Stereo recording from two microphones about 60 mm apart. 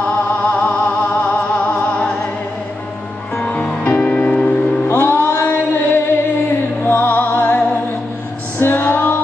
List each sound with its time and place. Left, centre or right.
0.4 s music: left
3.3 s music: left
4.8 s music: left
6.8 s music: left
8.5 s female singing: left